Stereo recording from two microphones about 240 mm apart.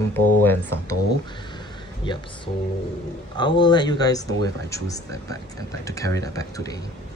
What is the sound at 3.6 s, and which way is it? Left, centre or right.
Speech, centre.